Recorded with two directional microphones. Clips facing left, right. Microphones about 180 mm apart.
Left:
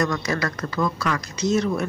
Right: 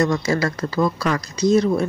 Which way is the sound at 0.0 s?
25° right (ahead or behind).